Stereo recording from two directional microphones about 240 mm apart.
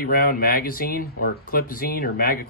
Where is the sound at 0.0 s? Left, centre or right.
Left.